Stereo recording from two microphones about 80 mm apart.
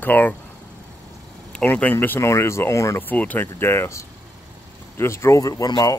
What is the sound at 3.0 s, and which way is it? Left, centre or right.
A man's voice, left.